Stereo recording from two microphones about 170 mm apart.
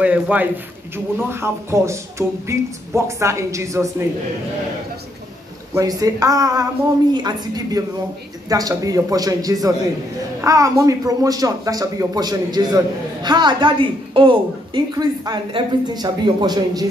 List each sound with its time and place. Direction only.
0.0 s speech: 10° right (ahead or behind)
5.8 s speech: 20° right (ahead or behind)